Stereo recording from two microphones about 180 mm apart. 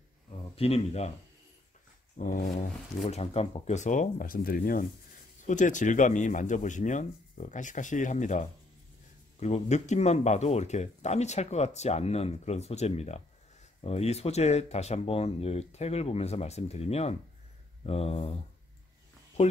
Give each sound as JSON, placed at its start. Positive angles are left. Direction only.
{"t": 0.6, "sound": "speech", "side_deg": 35}
{"t": 2.1, "sound": "speech", "side_deg": 50}
{"t": 3.1, "sound": "speech", "side_deg": 35}